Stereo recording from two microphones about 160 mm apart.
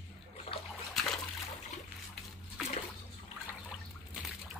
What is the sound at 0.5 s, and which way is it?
Splash, 35° left (ahead or behind).